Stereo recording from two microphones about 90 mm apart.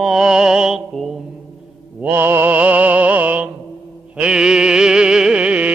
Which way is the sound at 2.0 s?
25° right (ahead or behind).